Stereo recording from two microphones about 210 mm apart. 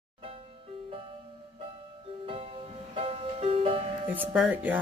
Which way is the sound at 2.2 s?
25° right (ahead or behind).